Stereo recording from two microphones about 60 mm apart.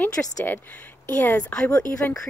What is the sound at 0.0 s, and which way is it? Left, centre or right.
Speech, left.